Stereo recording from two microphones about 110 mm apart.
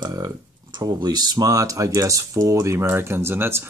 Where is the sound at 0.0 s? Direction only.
35° right (ahead or behind).